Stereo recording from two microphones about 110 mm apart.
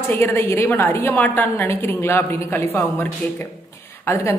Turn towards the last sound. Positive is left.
turn(degrees=20)  # may be behind; listen again after turning